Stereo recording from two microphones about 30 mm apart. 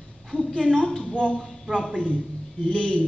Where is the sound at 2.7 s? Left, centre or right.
Left.